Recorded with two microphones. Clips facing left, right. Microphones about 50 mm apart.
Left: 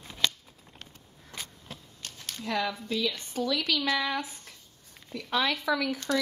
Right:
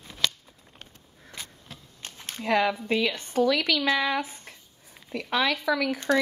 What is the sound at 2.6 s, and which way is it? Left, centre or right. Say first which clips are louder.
A woman's voice: right 4 dB; right.